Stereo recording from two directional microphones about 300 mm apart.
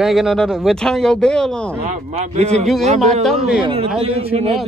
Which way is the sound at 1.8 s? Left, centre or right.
Right.